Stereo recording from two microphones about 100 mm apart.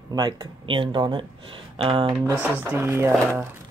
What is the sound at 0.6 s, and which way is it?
Speech, 55° right (ahead or behind).